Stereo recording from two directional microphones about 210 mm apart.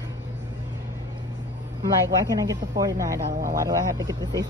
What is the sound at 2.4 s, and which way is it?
Speech, 15° right (ahead or behind).